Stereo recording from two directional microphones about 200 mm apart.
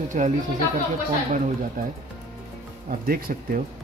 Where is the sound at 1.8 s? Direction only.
45° right (ahead or behind).